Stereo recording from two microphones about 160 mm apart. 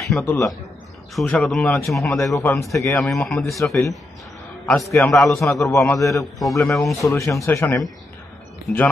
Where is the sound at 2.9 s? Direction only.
5° left (ahead or behind).